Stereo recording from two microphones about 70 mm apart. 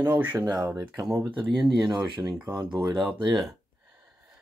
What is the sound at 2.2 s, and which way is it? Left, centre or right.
Speech, centre.